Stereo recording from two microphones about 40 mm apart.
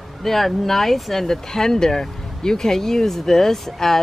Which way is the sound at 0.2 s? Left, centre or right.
Centre.